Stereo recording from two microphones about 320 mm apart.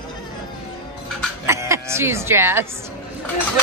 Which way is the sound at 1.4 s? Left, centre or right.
Centre.